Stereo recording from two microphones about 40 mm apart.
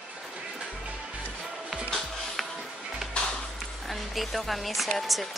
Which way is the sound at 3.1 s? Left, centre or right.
Centre.